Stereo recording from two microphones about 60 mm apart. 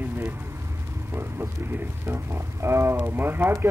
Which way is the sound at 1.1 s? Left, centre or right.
Right.